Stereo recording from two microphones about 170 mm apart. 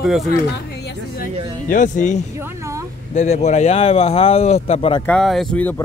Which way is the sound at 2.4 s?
15° right (ahead or behind).